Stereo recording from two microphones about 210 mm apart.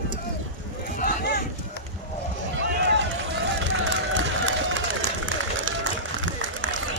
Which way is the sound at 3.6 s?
65° right (ahead or behind).